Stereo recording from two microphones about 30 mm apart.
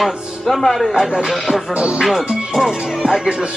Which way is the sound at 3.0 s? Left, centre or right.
Right.